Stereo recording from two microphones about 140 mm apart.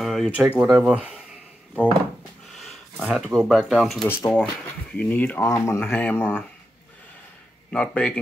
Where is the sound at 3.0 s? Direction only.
5° right (ahead or behind).